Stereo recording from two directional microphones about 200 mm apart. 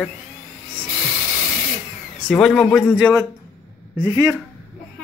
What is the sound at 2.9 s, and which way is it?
Speech, 10° right (ahead or behind).